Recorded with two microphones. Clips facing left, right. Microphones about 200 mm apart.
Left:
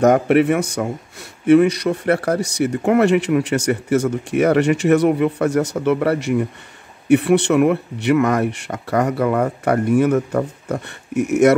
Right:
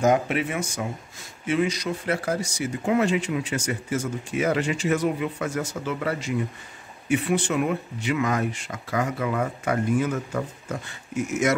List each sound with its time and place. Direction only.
0.0 s speech: 65° left (ahead or behind)